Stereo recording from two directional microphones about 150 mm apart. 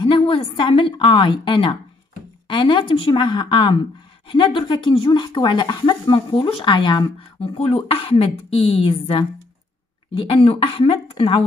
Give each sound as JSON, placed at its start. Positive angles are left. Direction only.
{"t": 0.0, "sound": "speech", "side_deg": 35}